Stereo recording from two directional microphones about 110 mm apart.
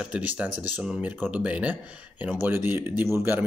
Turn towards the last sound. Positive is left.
turn(degrees=-20)  # may be behind; listen again after turning